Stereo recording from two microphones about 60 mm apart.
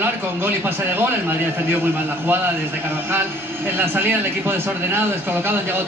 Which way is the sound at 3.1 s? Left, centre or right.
Right.